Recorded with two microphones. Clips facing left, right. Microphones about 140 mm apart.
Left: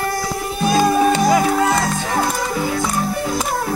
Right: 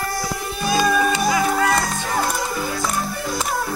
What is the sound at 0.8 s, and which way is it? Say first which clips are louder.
Music: left 4 dB; 30° left (ahead or behind).